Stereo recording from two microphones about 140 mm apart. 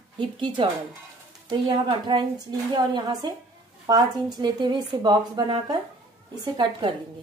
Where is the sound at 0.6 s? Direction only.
40° right (ahead or behind).